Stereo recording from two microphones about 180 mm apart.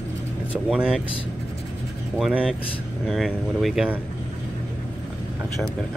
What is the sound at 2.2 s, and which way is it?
Speech, 5° right (ahead or behind).